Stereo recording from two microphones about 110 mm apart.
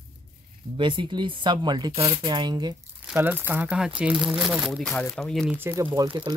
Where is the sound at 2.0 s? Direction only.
55° right (ahead or behind).